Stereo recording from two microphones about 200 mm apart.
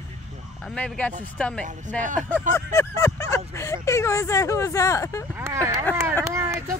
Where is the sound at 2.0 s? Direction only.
40° right (ahead or behind).